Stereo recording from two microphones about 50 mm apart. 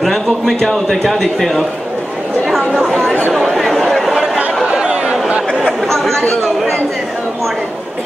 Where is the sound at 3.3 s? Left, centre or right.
Centre.